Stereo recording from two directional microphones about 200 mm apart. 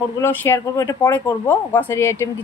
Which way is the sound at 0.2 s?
10° left (ahead or behind).